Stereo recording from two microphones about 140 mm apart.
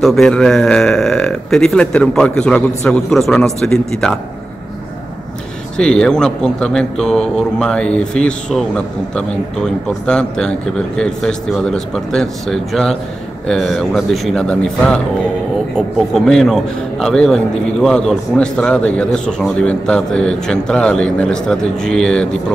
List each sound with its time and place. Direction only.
0.0 s a man's voice: centre (ahead or behind)
5.8 s a man's voice: 5° left (ahead or behind)
16.3 s a man's voice: 5° left (ahead or behind)